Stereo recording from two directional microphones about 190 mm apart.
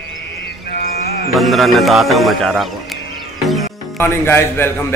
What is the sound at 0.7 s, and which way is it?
Music, 55° left (ahead or behind).